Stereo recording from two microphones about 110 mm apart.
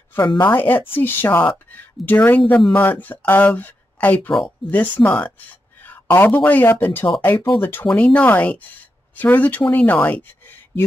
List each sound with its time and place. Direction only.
0.4 s speech: 20° left (ahead or behind)